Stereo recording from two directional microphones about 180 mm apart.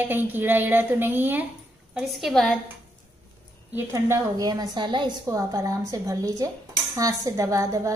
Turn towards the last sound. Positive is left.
turn(degrees=-15)  # may be behind; listen again after turning